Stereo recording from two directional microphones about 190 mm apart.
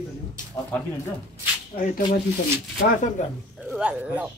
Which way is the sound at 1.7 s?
40° left (ahead or behind).